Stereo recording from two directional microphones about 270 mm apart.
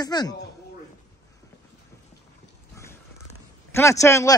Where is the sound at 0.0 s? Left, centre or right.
Centre.